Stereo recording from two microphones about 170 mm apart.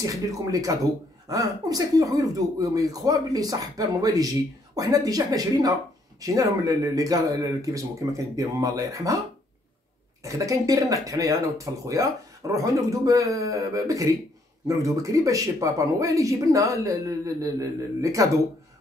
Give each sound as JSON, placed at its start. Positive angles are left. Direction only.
{"t": 0.0, "sound": "speech", "side_deg": -20}
{"t": 10.2, "sound": "speech", "side_deg": -20}